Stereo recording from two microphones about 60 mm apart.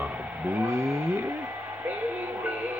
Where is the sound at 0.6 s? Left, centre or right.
Right.